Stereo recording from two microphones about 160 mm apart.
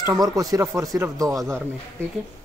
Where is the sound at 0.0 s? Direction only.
25° right (ahead or behind).